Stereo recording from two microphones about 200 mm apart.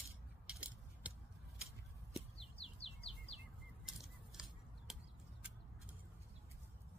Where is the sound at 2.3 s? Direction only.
30° left (ahead or behind).